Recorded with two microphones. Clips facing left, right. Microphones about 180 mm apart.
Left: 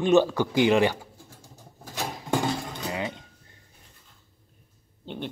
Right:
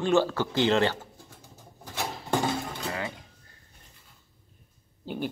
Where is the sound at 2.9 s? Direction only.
20° left (ahead or behind).